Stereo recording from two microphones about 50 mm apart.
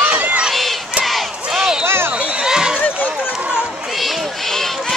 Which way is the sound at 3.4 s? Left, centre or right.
Centre.